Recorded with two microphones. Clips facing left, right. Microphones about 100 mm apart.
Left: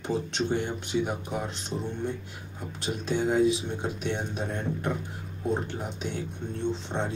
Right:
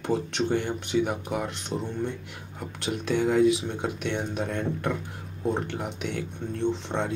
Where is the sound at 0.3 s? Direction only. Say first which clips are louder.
Right 2 dB; 65° right (ahead or behind).